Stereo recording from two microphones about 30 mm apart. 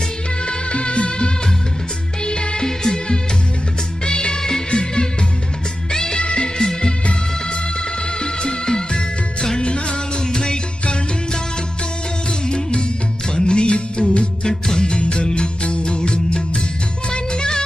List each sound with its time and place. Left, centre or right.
0.5 s music: left
2.2 s music: left
6.1 s music: left
8.2 s music: left
9.6 s music: left
12.4 s music: left